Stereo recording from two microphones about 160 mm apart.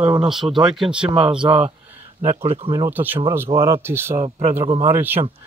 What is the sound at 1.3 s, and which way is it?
Speech, 35° right (ahead or behind).